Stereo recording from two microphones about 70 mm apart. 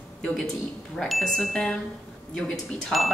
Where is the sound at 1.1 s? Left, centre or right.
Centre.